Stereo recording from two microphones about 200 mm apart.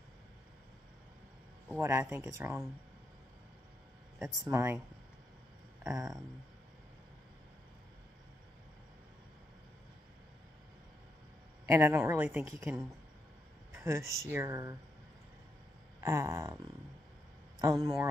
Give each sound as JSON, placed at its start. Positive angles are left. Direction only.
{"t": 1.8, "sound": "a woman's voice", "side_deg": -15}
{"t": 4.5, "sound": "a woman's voice", "side_deg": -15}
{"t": 5.9, "sound": "a woman's voice", "side_deg": -15}
{"t": 11.6, "sound": "a woman's voice", "side_deg": -15}
{"t": 13.7, "sound": "a sound", "side_deg": -15}
{"t": 14.2, "sound": "a woman's voice", "side_deg": -15}
{"t": 16.0, "sound": "a woman's voice", "side_deg": -15}
{"t": 17.6, "sound": "a woman's voice", "side_deg": -15}